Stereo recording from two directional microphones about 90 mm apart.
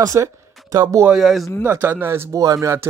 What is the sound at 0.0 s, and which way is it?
Speech, 40° right (ahead or behind).